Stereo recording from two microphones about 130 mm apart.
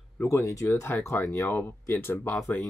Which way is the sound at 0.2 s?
20° left (ahead or behind).